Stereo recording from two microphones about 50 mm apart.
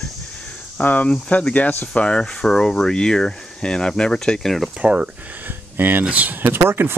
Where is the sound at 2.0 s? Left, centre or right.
Centre.